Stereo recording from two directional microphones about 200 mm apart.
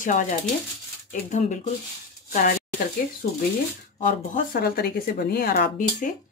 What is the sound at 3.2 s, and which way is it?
Speech, 50° left (ahead or behind).